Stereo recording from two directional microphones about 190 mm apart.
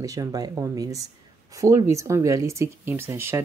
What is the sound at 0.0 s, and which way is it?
Speech, 20° right (ahead or behind).